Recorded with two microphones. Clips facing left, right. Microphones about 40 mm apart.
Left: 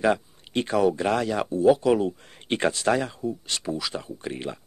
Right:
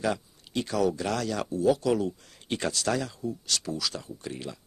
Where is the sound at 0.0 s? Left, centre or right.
Left.